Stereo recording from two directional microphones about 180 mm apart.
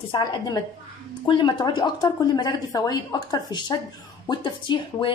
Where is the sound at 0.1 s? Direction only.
25° left (ahead or behind).